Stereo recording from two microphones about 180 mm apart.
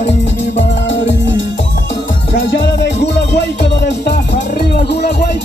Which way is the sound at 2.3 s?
85° left.